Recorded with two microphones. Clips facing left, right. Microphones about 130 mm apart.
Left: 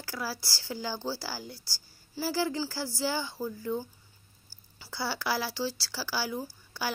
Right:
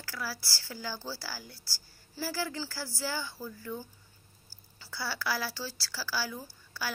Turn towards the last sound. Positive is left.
turn(degrees=20)  # may be behind; listen again after turning